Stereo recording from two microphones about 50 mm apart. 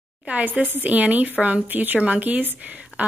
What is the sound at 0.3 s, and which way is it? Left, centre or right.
A woman's voice, right.